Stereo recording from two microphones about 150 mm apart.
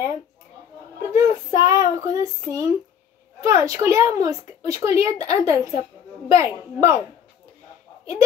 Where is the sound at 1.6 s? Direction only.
20° right (ahead or behind).